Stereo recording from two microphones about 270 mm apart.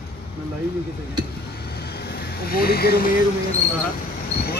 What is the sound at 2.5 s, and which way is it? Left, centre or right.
Speech, left.